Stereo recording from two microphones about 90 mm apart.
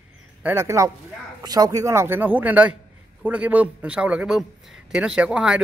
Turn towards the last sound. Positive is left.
turn(degrees=-10)  # may be behind; listen again after turning